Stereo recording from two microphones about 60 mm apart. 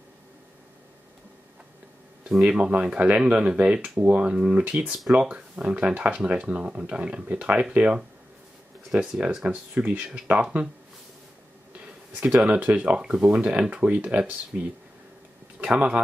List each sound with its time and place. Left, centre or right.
2.3 s speech: centre
2.6 s speech: centre
8.9 s speech: centre
12.1 s speech: right